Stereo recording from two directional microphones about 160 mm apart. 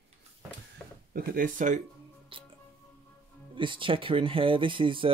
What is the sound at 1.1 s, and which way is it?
Speech, 60° right (ahead or behind).